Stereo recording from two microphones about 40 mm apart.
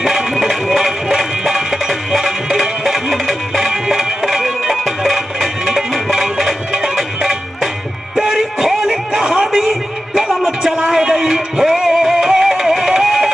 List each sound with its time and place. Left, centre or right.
0.0 s music: centre
9.6 s music: centre
10.9 s music: centre